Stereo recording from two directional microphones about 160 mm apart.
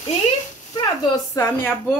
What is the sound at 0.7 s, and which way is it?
Speech, 20° left (ahead or behind).